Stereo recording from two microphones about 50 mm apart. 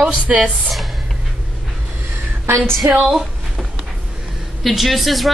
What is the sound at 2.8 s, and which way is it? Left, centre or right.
Speech, right.